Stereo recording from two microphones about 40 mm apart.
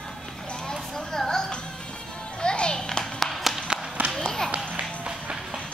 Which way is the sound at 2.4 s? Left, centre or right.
Left.